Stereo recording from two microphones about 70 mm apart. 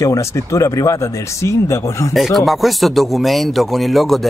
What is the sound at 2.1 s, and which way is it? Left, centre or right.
Speech, centre.